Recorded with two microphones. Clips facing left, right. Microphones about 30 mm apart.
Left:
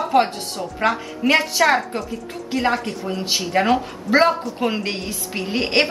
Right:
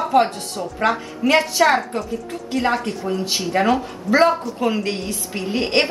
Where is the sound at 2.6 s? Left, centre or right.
Centre; by 5.8 s left.